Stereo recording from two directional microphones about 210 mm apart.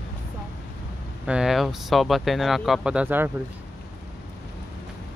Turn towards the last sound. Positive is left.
turn(degrees=-10)  # may be behind; listen again after turning